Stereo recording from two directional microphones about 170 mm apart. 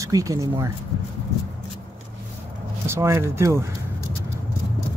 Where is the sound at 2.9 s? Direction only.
15° right (ahead or behind).